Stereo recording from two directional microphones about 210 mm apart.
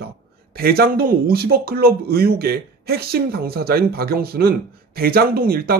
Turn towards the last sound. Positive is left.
turn(degrees=-45)  # may be behind; listen again after turning